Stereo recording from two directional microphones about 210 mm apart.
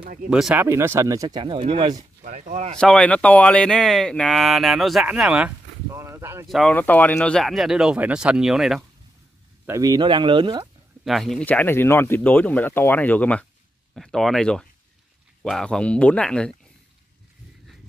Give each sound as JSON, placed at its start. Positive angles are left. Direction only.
{"t": 0.0, "sound": "speech", "side_deg": -40}
{"t": 0.3, "sound": "speech", "side_deg": -5}
{"t": 2.2, "sound": "speech", "side_deg": -35}
{"t": 2.8, "sound": "speech", "side_deg": 5}
{"t": 6.4, "sound": "speech", "side_deg": 0}
{"t": 9.7, "sound": "speech", "side_deg": -15}
{"t": 11.1, "sound": "speech", "side_deg": 0}